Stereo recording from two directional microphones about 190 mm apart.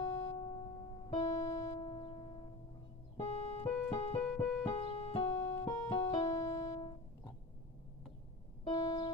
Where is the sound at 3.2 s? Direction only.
30° left (ahead or behind).